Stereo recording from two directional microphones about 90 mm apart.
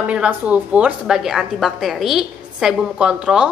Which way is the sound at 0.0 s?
15° right (ahead or behind).